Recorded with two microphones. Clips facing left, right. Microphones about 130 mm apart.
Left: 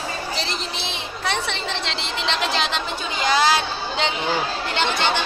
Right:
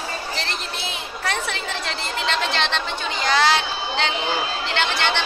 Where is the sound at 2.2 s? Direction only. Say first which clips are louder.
Even; 5° left (ahead or behind).